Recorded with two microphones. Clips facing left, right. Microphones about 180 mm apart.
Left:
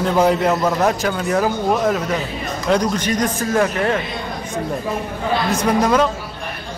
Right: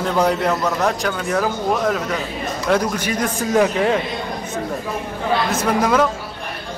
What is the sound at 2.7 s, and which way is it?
A man's voice, 10° right (ahead or behind).